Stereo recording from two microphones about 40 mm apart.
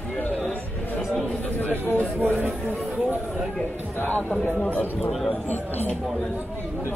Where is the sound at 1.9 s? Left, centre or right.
Right.